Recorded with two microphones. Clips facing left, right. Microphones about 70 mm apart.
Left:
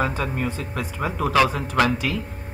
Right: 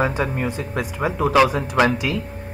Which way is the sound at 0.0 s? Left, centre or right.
Right.